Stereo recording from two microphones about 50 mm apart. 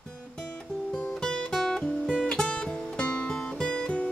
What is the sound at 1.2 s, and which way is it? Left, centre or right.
Music, centre.